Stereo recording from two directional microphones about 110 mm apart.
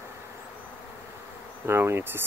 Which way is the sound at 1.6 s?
25° right (ahead or behind).